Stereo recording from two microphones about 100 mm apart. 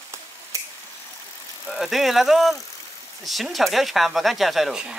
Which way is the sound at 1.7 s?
Centre (ahead or behind).